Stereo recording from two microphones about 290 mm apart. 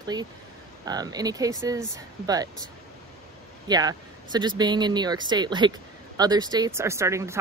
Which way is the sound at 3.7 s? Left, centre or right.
Centre.